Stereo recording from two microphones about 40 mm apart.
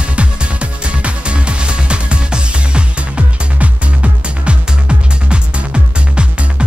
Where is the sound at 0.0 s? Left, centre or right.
Right.